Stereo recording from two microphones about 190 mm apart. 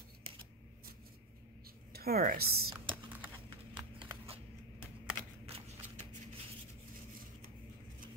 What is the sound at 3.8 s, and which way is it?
Horse, 30° right (ahead or behind).